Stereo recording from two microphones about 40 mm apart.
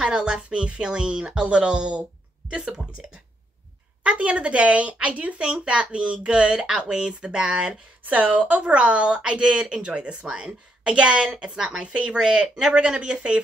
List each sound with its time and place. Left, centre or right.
0.0 s a woman's voice: right
4.0 s a woman's voice: right
8.0 s a woman's voice: right